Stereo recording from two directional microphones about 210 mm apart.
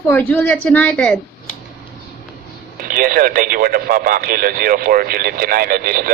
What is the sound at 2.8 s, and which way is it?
Speech, 45° right (ahead or behind).